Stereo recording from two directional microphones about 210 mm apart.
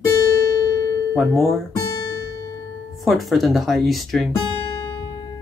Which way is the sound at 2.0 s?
20° left (ahead or behind).